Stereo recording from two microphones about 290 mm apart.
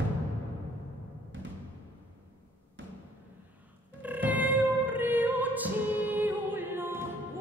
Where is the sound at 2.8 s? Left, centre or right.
Right.